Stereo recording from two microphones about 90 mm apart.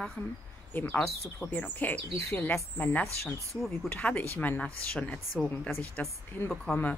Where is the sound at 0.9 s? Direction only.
5° left (ahead or behind).